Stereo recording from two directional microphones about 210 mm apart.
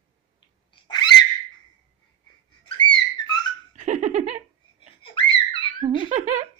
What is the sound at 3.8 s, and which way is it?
Laughter, 35° right (ahead or behind).